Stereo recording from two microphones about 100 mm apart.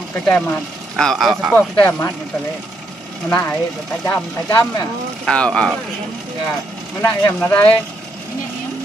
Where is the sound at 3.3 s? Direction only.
15° left (ahead or behind).